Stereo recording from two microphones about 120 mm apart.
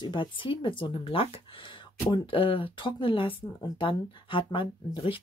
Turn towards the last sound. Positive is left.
turn(degrees=45)  # may be behind; listen again after turning